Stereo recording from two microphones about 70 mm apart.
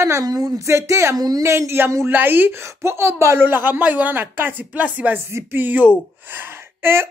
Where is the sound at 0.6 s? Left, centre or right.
Right.